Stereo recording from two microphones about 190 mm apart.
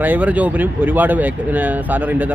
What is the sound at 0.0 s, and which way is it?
Speech, 10° right (ahead or behind).